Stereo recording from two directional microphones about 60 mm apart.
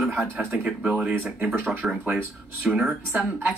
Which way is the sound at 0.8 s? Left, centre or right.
Centre.